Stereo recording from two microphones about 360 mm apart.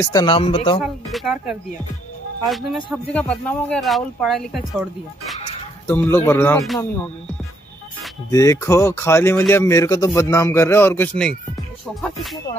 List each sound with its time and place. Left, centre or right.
0.0 s speech: centre
0.8 s speech: centre
5.4 s music: centre
6.2 s speech: centre
8.0 s speech: centre